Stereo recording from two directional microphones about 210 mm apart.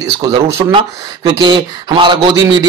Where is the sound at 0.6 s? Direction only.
20° right (ahead or behind).